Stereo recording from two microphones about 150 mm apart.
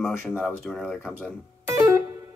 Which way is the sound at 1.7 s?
20° right (ahead or behind).